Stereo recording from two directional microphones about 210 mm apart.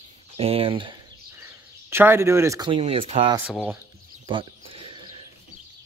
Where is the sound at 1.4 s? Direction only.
10° right (ahead or behind); by 3.3 s 25° right (ahead or behind).